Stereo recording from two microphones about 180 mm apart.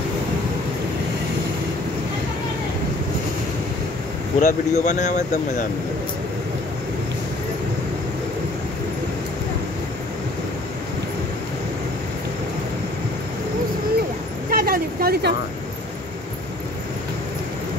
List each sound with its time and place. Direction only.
4.4 s speech: 40° left (ahead or behind)
14.5 s vehicle: 55° right (ahead or behind)